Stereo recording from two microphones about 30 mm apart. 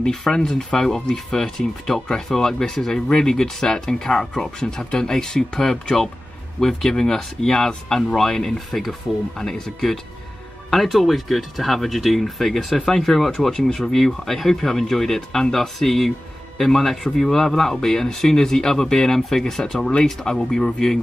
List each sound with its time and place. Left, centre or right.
0.3 s speech: left
8.5 s speech: centre
9.4 s speech: centre
10.7 s speech: centre
12.9 s speech: centre
13.5 s speech: left
13.8 s speech: centre